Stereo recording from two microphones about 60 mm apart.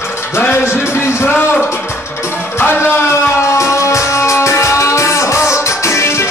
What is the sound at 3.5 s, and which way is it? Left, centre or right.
Music, left.